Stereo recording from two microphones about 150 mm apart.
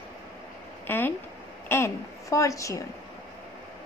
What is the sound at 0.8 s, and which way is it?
A woman's voice, 15° left (ahead or behind).